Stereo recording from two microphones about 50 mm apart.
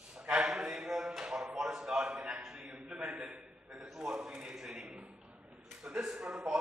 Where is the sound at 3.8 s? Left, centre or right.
Centre.